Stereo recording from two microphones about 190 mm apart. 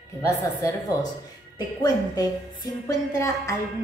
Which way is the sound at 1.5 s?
20° left (ahead or behind).